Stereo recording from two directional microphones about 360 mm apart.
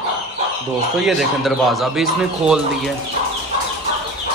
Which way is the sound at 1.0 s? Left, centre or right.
Centre.